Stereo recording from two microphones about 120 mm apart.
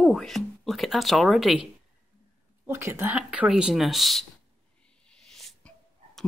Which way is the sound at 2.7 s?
20° right (ahead or behind).